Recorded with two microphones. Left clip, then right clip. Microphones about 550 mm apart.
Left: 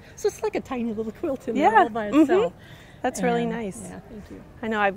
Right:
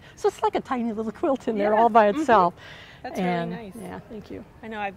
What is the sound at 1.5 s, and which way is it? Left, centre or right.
Speech, left.